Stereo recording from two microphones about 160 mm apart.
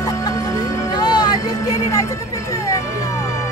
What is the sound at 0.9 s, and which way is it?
Vehicle, 25° left (ahead or behind).